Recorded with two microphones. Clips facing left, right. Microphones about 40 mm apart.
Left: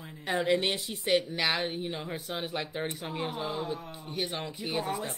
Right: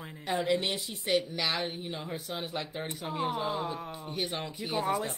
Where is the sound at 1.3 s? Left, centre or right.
Left.